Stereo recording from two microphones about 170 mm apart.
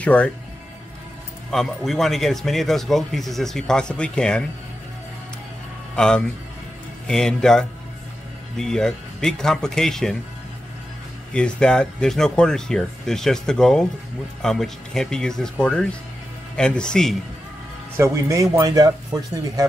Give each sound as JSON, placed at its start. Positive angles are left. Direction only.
{"t": 0.0, "sound": "speech", "side_deg": 10}
{"t": 1.5, "sound": "speech", "side_deg": 0}
{"t": 5.9, "sound": "speech", "side_deg": 5}
{"t": 11.3, "sound": "speech", "side_deg": 5}
{"t": 17.9, "sound": "speech", "side_deg": -15}